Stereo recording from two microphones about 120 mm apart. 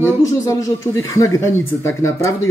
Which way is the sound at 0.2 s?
25° left (ahead or behind).